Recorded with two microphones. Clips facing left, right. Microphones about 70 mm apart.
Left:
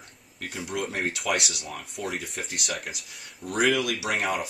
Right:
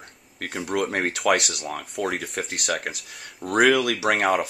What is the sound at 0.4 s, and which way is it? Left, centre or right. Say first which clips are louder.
Speech: right 6 dB; right.